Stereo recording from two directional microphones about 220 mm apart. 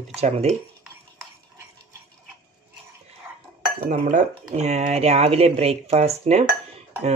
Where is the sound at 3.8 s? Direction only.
35° right (ahead or behind).